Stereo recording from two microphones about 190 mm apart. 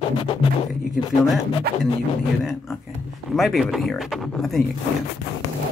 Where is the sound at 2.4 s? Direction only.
Centre (ahead or behind).